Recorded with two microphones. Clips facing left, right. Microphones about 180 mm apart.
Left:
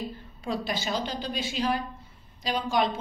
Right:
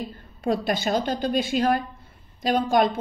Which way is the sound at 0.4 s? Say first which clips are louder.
Right 7 dB; 55° right (ahead or behind).